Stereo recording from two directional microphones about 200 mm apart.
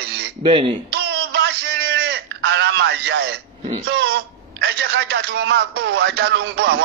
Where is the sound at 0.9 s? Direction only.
55° right (ahead or behind).